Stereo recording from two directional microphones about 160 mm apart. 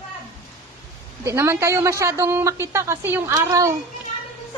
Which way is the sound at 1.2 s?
15° right (ahead or behind).